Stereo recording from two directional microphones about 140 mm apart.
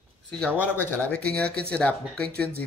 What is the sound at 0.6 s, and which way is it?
Speech, 15° left (ahead or behind).